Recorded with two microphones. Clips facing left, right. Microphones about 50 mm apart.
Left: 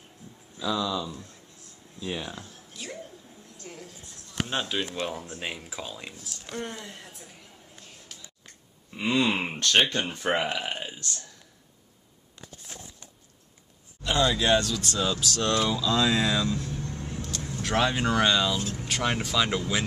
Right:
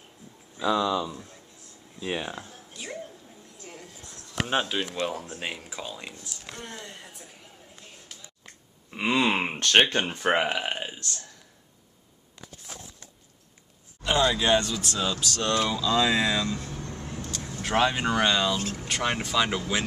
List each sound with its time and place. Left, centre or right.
0.6 s speech: right
1.1 s speech: centre
2.0 s speech: right
2.7 s a sound: centre
4.6 s speech: centre
8.9 s speech: right; by 11.2 s centre
14.0 s speech: centre
16.7 s vehicle: right
17.2 s vehicle: centre
17.6 s speech: centre